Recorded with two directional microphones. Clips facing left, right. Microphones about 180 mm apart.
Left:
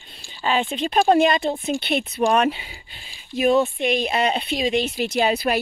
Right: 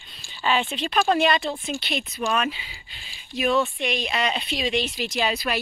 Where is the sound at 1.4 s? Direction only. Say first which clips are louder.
Left 6 dB; 50° left (ahead or behind).